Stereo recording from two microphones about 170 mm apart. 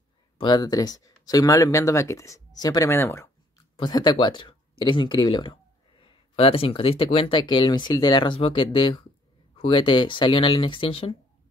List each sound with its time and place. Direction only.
0.4 s speech: 25° left (ahead or behind)
3.7 s speech: 25° left (ahead or behind)